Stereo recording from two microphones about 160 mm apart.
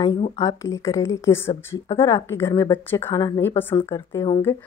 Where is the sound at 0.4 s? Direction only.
20° left (ahead or behind).